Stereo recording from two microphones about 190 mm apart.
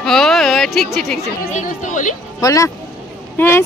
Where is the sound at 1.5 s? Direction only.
40° left (ahead or behind).